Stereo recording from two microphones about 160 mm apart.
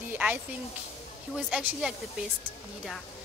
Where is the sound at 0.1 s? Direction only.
10° right (ahead or behind).